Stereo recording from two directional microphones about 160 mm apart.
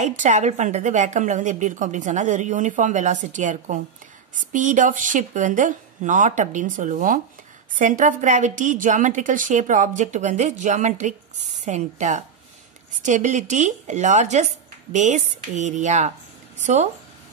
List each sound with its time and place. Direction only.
0.0 s a woman's voice: 50° right (ahead or behind)